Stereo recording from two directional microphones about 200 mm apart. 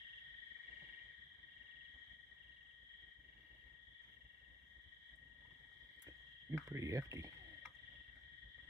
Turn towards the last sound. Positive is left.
turn(degrees=-15)  # may be behind; listen again after turning